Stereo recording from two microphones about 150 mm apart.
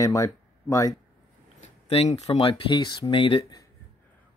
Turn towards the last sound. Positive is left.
turn(degrees=35)  # may be behind; listen again after turning